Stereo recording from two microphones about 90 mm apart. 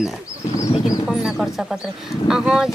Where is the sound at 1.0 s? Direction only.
5° right (ahead or behind).